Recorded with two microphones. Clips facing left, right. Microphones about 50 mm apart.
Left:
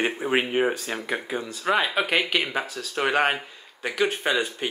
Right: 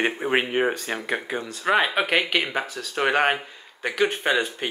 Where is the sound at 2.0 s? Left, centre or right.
Centre.